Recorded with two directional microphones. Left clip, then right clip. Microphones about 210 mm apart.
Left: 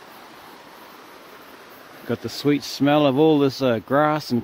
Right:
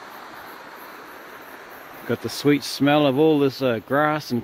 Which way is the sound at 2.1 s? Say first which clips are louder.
Right 1 dB; 5° left (ahead or behind).